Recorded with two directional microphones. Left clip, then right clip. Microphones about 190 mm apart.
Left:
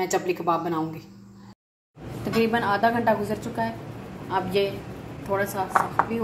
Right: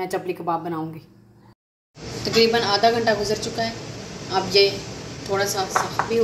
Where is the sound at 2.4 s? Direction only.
40° left (ahead or behind).